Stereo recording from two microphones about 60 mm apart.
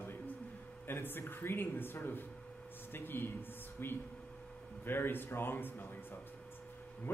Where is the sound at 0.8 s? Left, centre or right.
Left.